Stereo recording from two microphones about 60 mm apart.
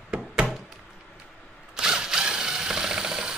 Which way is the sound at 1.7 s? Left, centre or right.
Centre.